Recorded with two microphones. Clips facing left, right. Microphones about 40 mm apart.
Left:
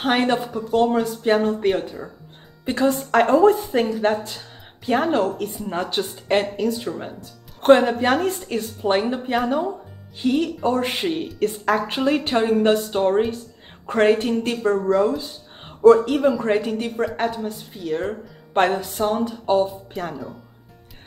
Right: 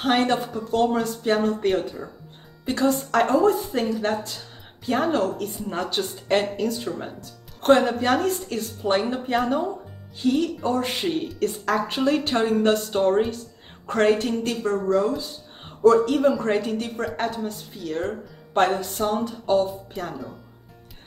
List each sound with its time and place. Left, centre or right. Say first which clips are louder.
0.0 s speech: left 1 dB; centre
0.5 s speech: left 3 dB; centre
15.1 s a sound: left 2 dB; left
15.9 s speech: left 3 dB; centre
18.5 s music: left 2 dB; centre
18.9 s speech: left 3 dB; centre